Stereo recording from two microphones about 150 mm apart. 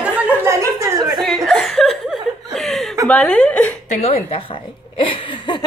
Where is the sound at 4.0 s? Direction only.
45° left (ahead or behind).